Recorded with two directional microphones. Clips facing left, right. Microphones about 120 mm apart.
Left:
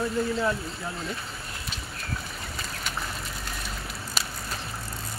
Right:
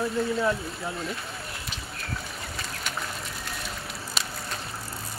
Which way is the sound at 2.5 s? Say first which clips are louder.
Even; centre (ahead or behind).